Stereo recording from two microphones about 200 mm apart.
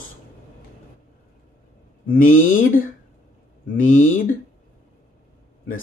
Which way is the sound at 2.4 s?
40° left (ahead or behind).